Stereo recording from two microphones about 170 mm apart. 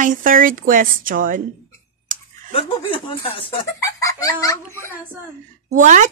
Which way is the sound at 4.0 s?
20° left (ahead or behind).